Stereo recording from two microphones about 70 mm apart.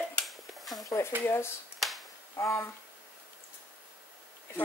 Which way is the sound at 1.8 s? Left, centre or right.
Centre.